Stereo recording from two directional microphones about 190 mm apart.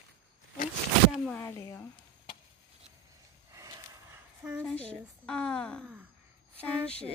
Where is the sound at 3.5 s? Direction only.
20° right (ahead or behind).